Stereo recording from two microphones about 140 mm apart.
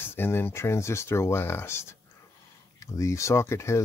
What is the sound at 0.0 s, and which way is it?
Speech, 15° left (ahead or behind).